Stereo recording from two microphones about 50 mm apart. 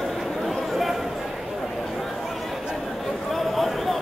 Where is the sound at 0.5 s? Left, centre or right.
Centre.